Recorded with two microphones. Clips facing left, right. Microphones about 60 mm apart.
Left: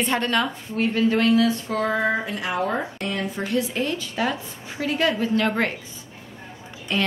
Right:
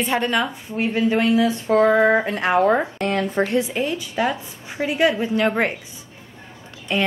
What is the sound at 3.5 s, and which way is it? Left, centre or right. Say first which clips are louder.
A woman's voice: right 3 dB; centre.